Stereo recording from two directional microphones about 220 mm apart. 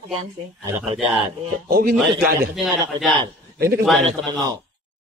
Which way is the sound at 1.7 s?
45° right (ahead or behind).